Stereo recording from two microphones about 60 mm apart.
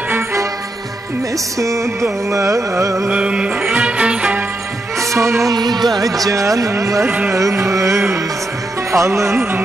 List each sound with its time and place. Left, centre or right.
0.1 s music: right
1.6 s carnatic music: right
3.1 s music: centre
4.9 s music: right
5.5 s music: right
6.8 s carnatic music: right
8.9 s music: right